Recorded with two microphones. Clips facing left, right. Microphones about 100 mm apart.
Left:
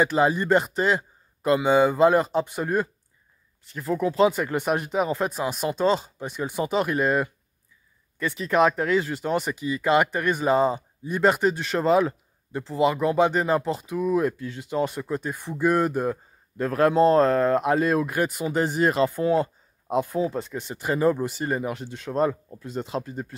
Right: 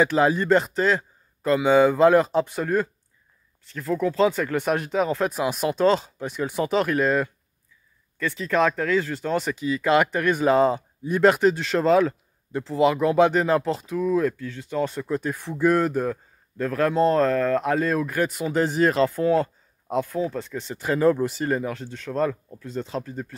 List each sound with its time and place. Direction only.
0.0 s a man's voice: 5° left (ahead or behind)
18.3 s speech: 5° left (ahead or behind)
20.5 s speech: 5° left (ahead or behind)